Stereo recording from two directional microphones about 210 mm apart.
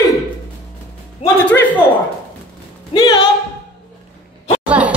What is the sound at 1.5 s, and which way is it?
Speech, 5° left (ahead or behind).